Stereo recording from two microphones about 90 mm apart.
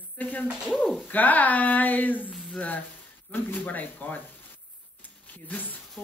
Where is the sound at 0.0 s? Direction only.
20° left (ahead or behind).